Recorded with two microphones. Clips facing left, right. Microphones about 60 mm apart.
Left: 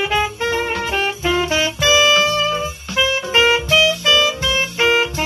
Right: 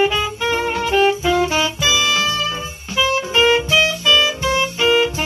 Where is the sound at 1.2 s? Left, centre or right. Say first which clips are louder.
Right 1 dB; left.